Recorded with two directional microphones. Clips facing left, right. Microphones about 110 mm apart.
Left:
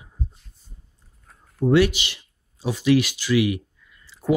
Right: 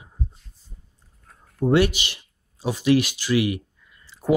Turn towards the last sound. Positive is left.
turn(degrees=-25)  # may be behind; listen again after turning